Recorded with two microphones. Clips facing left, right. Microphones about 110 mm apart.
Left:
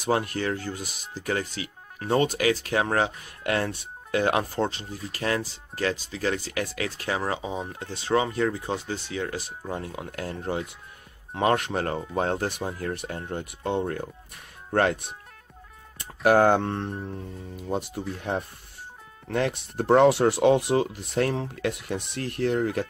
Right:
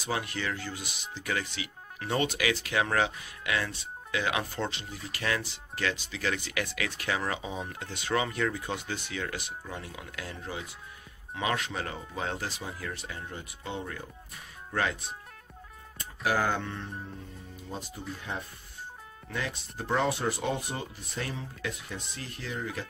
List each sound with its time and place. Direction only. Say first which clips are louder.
0.0 s speech: left 7 dB; 45° left (ahead or behind)
3.4 s speech: left 6 dB; 45° left (ahead or behind)
16.3 s speech: left 10 dB; 60° left (ahead or behind)
17.6 s speech: left 11 dB; 65° left (ahead or behind)